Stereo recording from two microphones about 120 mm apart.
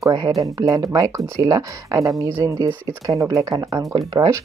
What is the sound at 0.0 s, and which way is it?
Speech, 40° right (ahead or behind).